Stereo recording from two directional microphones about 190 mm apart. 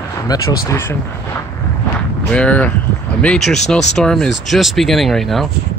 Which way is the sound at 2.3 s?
5° left (ahead or behind).